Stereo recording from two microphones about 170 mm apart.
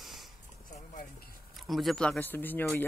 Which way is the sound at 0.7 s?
50° left (ahead or behind).